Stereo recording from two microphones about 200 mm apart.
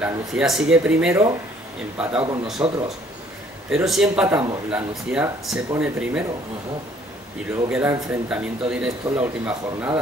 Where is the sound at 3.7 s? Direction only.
Centre (ahead or behind).